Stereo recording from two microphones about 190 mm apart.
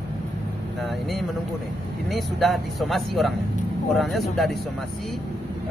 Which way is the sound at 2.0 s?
Centre (ahead or behind).